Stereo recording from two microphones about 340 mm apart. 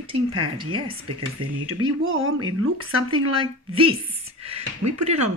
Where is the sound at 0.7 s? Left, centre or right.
Right.